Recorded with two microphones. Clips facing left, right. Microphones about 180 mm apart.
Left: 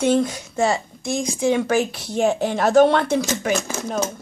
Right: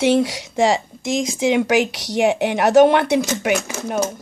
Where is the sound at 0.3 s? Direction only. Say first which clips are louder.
Right 3 dB; 90° right; by 2.5 s 75° right (ahead or behind).